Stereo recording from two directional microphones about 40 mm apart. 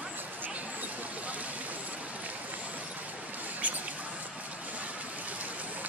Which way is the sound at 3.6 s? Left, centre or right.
Right.